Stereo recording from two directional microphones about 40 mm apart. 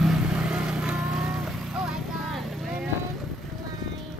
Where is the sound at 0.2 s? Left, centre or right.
Right.